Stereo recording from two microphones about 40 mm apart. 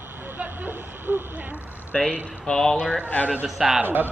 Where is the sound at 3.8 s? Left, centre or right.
Right.